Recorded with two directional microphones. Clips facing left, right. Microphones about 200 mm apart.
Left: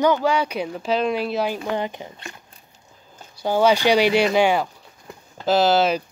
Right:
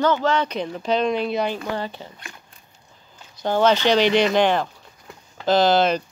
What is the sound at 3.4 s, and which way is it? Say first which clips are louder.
Speech: left 1 dB; 10° left (ahead or behind).